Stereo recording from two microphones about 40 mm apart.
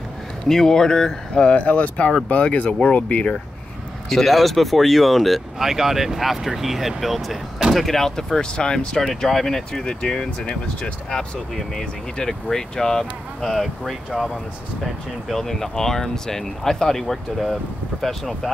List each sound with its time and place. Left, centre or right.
0.5 s speech: centre
1.4 s speech: left
4.1 s speech: centre
5.6 s speech: centre
8.4 s speech: left
9.0 s speech: centre
13.5 s speech: centre
15.2 s speech: centre